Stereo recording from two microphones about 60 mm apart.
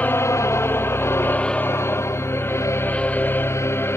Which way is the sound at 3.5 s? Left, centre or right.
Left.